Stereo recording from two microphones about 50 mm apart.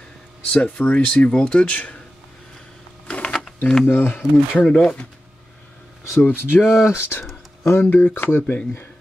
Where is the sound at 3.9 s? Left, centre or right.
Left.